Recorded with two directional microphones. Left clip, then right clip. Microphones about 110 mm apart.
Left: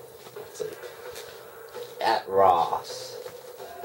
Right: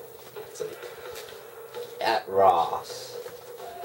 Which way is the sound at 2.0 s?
Centre (ahead or behind).